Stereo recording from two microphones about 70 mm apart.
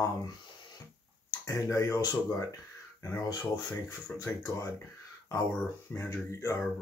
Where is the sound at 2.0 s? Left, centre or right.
Left.